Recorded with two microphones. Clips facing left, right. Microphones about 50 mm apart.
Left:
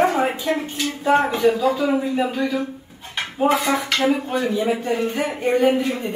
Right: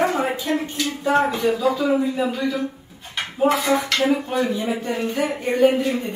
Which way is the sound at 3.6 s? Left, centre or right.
Centre.